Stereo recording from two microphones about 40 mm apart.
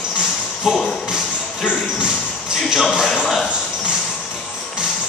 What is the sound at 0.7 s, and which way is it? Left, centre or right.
Speech, centre.